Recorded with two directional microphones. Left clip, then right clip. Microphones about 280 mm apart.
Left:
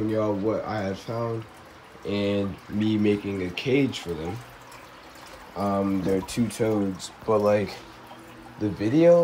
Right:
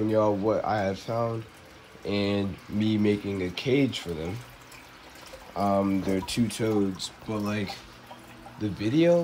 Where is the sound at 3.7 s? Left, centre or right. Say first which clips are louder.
Left 2 dB; right.